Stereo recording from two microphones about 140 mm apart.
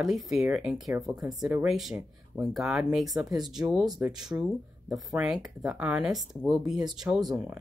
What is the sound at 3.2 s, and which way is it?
Speech, 30° right (ahead or behind).